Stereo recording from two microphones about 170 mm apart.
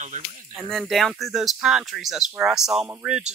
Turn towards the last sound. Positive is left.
turn(degrees=-5)  # may be behind; listen again after turning